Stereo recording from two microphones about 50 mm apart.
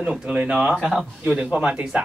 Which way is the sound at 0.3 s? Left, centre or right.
Right.